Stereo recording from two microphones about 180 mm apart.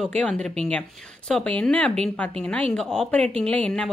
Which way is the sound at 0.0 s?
5° left (ahead or behind).